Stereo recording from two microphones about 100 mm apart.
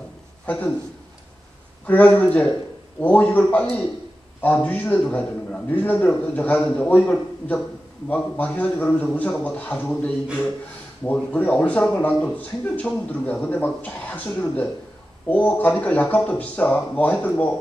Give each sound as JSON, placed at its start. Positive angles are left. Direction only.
{"t": 0.5, "sound": "speech", "side_deg": 15}
{"t": 1.9, "sound": "speech", "side_deg": 15}